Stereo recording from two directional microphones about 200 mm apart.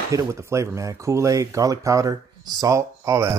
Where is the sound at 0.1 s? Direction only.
15° right (ahead or behind).